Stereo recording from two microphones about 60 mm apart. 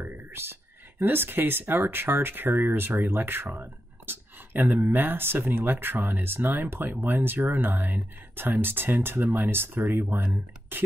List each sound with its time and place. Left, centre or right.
0.0 s speech: right